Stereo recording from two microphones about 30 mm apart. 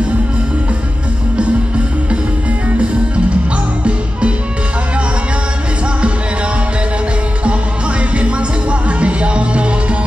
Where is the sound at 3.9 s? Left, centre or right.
Right.